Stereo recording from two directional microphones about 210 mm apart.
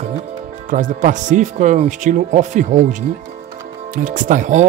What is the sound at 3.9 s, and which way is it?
Speech, 40° right (ahead or behind).